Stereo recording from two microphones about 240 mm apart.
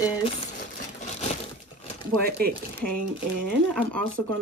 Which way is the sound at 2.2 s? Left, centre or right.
Right.